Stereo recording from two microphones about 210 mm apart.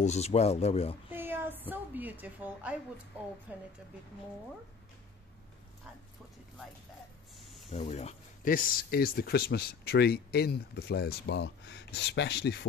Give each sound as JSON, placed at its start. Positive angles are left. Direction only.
{"t": 0.0, "sound": "speech", "side_deg": 30}
{"t": 1.1, "sound": "child singing", "side_deg": -10}
{"t": 1.7, "sound": "a woman's voice", "side_deg": -10}
{"t": 7.7, "sound": "speech", "side_deg": 30}